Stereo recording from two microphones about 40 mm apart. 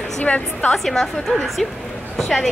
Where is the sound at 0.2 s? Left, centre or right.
Left.